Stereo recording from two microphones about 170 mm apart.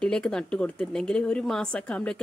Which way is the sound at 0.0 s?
5° left (ahead or behind).